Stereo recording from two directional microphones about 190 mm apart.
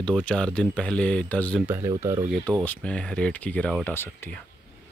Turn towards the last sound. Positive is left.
turn(degrees=10)  # may be behind; listen again after turning